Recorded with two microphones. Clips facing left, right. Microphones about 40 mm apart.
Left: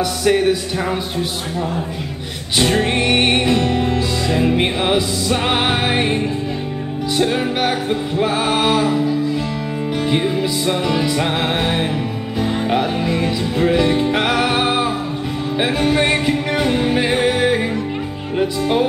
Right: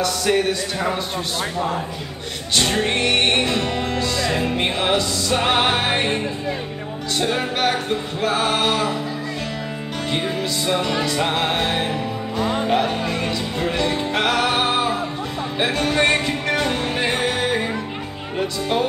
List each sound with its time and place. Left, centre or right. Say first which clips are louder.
0.0 s music: left 4 dB; centre
2.5 s music: left 3 dB; centre
7.2 s music: left 3 dB; centre
10.0 s music: left 4 dB; centre